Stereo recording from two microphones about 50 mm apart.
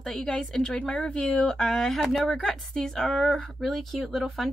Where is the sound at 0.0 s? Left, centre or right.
Centre.